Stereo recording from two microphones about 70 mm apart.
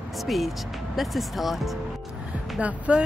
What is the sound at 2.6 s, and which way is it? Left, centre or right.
Speech, centre.